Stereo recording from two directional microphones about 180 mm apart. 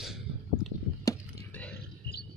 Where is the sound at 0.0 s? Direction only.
Centre (ahead or behind).